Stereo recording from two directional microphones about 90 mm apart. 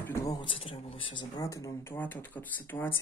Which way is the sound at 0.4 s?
75° left (ahead or behind).